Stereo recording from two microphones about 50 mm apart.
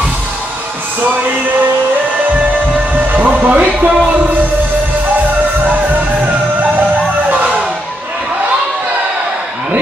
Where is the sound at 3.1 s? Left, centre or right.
Right.